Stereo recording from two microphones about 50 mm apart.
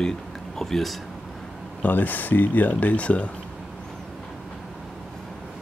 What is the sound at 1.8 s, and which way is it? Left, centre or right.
Speech, left.